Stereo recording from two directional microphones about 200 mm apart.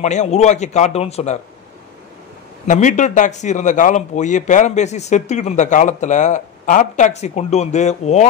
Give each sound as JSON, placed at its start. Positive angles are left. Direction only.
{"t": 0.0, "sound": "a man's voice", "side_deg": 35}
{"t": 2.6, "sound": "a man's voice", "side_deg": 40}